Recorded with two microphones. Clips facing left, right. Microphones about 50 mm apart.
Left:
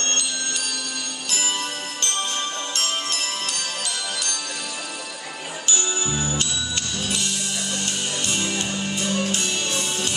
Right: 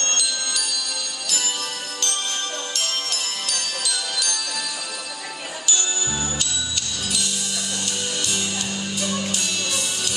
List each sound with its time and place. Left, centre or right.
2.7 s music: left
8.3 s music: left